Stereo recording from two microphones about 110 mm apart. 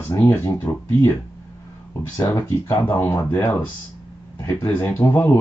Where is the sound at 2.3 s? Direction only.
20° left (ahead or behind).